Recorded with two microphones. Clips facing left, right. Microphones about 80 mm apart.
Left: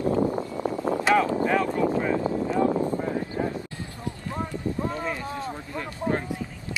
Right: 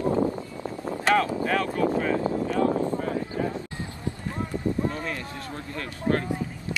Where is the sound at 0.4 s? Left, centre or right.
Left.